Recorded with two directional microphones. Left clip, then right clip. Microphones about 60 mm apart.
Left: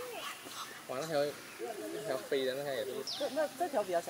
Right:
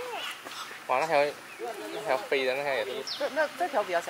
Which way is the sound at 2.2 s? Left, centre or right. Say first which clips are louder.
Right 7 dB; right.